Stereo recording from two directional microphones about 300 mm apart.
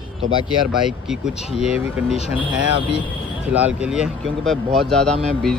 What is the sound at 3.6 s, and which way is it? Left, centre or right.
Speech, centre.